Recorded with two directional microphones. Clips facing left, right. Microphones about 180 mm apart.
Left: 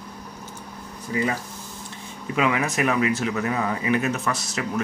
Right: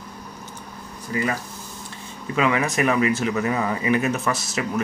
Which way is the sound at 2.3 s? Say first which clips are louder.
Right 2 dB; 5° left (ahead or behind).